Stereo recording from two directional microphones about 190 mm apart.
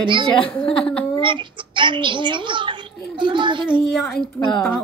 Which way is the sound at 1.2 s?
25° right (ahead or behind).